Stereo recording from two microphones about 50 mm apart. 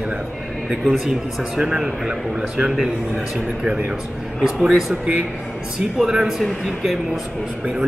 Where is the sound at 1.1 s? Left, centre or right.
Centre.